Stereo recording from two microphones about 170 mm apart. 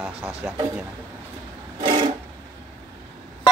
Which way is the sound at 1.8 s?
30° right (ahead or behind).